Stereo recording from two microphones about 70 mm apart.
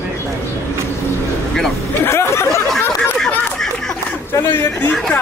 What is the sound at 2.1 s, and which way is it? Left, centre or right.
Speech, left.